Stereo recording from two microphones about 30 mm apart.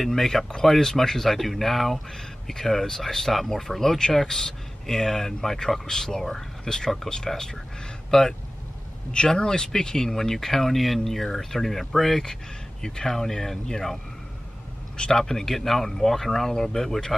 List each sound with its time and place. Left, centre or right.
0.0 s speech: centre
15.0 s speech: centre